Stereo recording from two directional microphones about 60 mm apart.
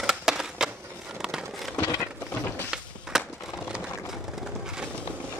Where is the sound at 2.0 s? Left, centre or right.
Left.